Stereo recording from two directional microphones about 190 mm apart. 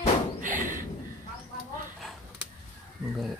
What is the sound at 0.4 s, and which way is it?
Thump, 45° right (ahead or behind).